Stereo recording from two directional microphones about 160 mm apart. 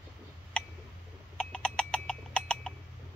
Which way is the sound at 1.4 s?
5° left (ahead or behind).